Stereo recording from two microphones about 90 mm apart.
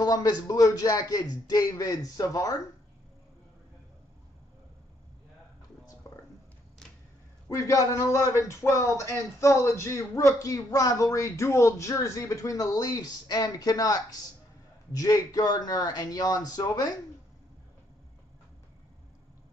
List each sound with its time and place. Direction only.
0.0 s a man's voice: 45° left (ahead or behind)
6.0 s a sound: 35° left (ahead or behind)
7.4 s a man's voice: 35° left (ahead or behind)